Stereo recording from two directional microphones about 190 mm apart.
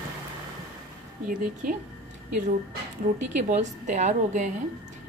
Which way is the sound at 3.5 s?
40° right (ahead or behind).